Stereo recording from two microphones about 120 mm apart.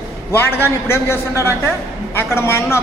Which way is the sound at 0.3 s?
20° left (ahead or behind).